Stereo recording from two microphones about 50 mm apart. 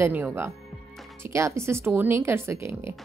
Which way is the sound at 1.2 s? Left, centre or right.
Right.